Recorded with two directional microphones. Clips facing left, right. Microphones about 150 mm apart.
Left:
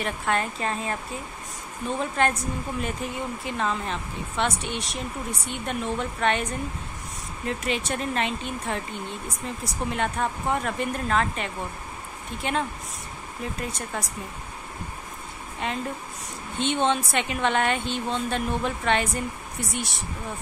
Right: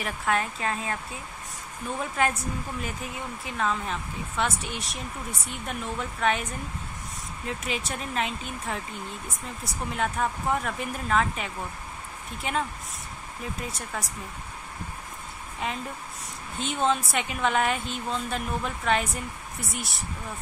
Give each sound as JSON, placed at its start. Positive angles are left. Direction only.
{"t": 0.0, "sound": "speech", "side_deg": 0}
{"t": 2.0, "sound": "speech", "side_deg": -5}
{"t": 7.4, "sound": "speech", "side_deg": 0}
{"t": 15.6, "sound": "speech", "side_deg": -5}